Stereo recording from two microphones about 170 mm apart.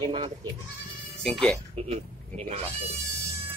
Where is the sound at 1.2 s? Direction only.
5° left (ahead or behind).